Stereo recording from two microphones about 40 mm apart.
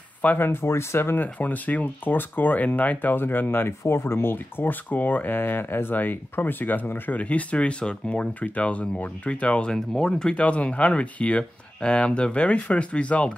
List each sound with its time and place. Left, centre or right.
0.4 s speech: left
1.2 s speech: left
4.6 s speech: left
7.8 s speech: left
8.4 s speech: left
9.9 s speech: centre
10.3 s speech: left